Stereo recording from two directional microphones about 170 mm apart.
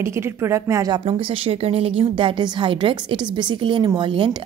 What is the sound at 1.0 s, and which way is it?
A woman's voice, 30° right (ahead or behind).